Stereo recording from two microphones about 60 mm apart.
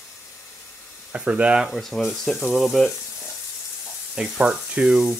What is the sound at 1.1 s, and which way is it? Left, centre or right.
Speech, right.